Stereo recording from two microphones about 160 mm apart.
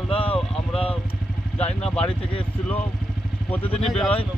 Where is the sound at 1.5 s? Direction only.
40° left (ahead or behind).